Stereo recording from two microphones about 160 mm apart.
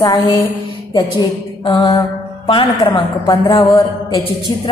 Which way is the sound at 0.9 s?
30° left (ahead or behind).